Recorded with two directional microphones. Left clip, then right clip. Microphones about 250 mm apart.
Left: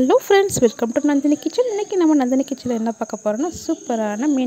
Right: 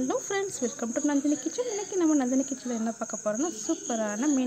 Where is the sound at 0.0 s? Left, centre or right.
Left.